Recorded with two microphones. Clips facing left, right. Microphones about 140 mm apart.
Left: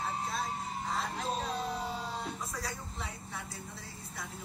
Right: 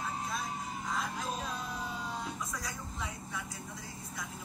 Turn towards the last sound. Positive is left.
turn(degrees=30)  # may be behind; listen again after turning